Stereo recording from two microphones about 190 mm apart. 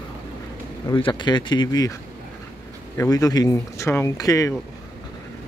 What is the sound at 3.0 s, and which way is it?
Speech, 15° left (ahead or behind).